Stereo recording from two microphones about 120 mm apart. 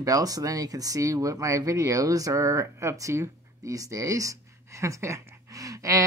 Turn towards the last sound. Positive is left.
turn(degrees=-30)  # may be behind; listen again after turning